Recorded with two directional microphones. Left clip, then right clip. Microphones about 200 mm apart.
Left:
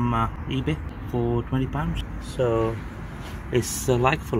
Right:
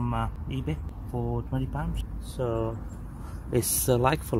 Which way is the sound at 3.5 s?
25° right (ahead or behind).